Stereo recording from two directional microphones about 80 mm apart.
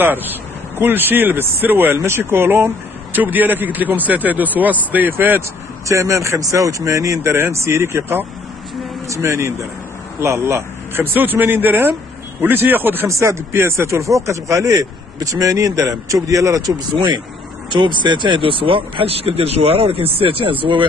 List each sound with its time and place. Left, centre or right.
0.7 s speech: right
5.9 s speech: right
13.1 s speech: right
16.7 s speech: right
17.6 s speech: right
20.4 s speech: right